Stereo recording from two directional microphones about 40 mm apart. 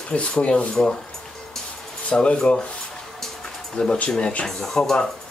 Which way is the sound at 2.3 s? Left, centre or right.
Centre.